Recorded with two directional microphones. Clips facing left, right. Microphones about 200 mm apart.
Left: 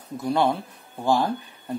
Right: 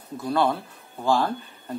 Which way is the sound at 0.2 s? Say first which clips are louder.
Left 1 dB; 15° left (ahead or behind).